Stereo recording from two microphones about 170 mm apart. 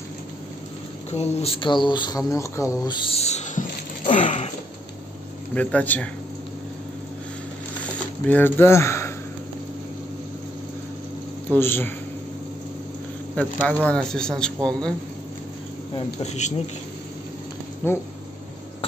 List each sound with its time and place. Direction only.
1.1 s speech: 35° left (ahead or behind); by 3.0 s 20° left (ahead or behind)
3.0 s speech: 35° left (ahead or behind)
5.5 s a man's voice: 5° left (ahead or behind)
7.8 s coin: 10° left (ahead or behind)
11.5 s a man's voice: 15° left (ahead or behind)
13.4 s a man's voice: 10° left (ahead or behind)
16.2 s speech: 45° left (ahead or behind)
17.8 s a man's voice: 10° left (ahead or behind)